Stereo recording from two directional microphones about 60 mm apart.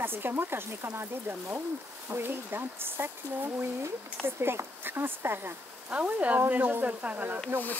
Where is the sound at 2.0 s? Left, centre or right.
Right.